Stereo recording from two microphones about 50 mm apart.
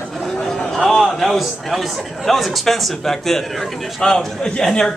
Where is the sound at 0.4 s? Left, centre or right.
Centre.